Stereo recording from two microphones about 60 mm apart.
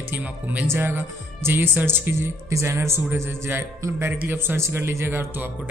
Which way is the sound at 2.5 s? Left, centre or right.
Right.